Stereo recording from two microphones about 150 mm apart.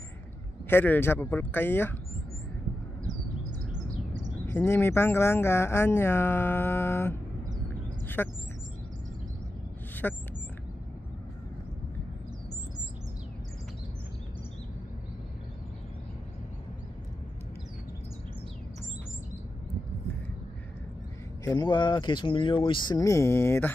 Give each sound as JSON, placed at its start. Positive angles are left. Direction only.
{"t": 0.7, "sound": "speech", "side_deg": 15}
{"t": 4.5, "sound": "speech", "side_deg": 15}
{"t": 8.2, "sound": "speech", "side_deg": 15}
{"t": 10.0, "sound": "speech", "side_deg": 10}
{"t": 21.5, "sound": "speech", "side_deg": 30}